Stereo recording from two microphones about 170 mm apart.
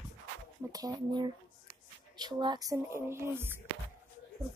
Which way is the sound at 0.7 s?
20° right (ahead or behind).